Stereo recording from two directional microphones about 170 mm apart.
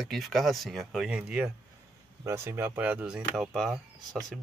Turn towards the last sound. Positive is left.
turn(degrees=0)  # may be behind; listen again after turning